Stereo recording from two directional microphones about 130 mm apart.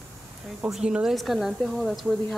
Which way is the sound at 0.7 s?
5° right (ahead or behind).